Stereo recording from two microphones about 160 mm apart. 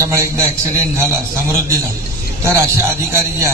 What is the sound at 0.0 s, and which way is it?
A man's voice, 20° right (ahead or behind).